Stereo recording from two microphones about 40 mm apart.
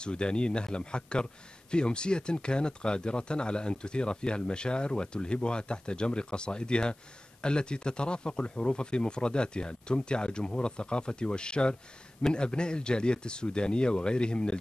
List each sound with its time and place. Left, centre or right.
0.0 s speech: left